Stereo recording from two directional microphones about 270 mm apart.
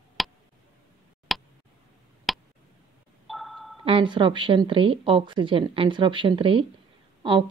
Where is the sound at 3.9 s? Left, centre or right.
Centre.